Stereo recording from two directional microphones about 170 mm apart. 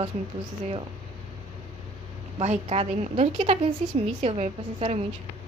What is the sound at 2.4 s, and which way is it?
A woman's voice, 35° right (ahead or behind).